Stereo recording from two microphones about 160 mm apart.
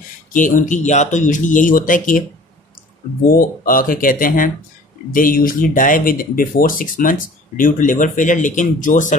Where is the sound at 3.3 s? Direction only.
60° left (ahead or behind).